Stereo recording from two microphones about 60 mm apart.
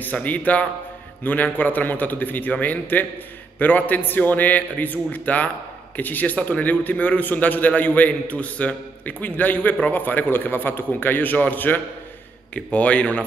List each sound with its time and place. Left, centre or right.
0.0 s a man's voice: left